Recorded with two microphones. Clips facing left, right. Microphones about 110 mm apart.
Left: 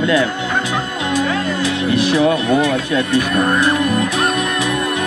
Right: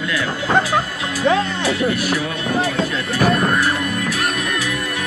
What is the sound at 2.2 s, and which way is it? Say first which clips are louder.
Speech: left 7 dB; 80° left.